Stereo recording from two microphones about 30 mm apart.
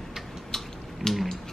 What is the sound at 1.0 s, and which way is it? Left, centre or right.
Speech, centre.